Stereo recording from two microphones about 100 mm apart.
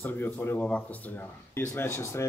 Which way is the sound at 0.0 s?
20° left (ahead or behind).